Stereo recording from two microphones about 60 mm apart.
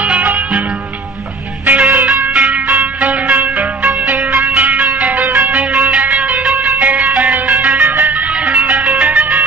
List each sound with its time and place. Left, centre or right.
0.0 s music: right
1.7 s music: right